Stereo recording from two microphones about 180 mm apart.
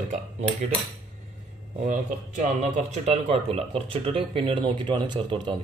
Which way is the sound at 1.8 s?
45° right (ahead or behind).